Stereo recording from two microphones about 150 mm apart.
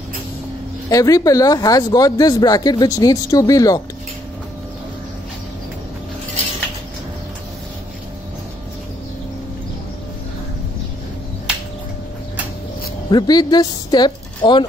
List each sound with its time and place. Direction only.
0.8 s speech: 25° left (ahead or behind)
13.1 s a woman's voice: 30° left (ahead or behind)